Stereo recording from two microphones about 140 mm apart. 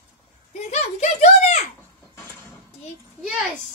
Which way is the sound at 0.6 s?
50° left (ahead or behind).